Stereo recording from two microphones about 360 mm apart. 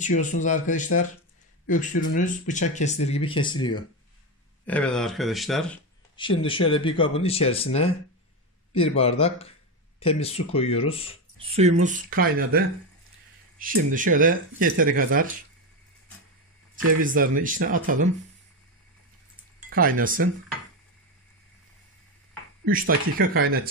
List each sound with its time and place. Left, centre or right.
0.0 s speech: left; by 5.8 s centre
6.1 s speech: centre
8.7 s speech: centre
11.3 s speech: centre
17.0 s speech: right
19.7 s speech: right
22.7 s speech: right